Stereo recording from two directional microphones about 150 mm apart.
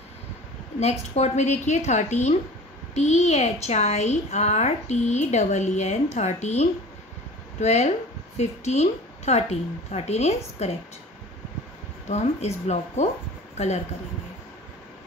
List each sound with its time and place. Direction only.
0.7 s a woman's voice: 50° left (ahead or behind)
12.1 s a woman's voice: 45° left (ahead or behind)